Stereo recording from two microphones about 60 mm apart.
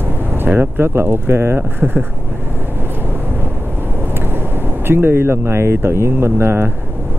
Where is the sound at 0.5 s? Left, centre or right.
Right.